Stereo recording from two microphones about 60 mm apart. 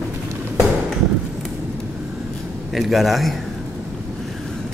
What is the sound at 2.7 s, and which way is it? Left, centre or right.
Speech, centre.